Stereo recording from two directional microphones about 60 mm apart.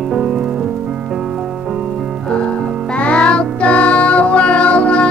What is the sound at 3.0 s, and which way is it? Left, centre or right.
Music, centre.